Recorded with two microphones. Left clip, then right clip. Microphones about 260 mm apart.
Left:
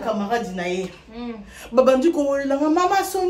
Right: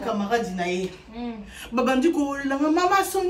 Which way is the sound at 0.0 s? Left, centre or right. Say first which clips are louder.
Left 2 dB; centre.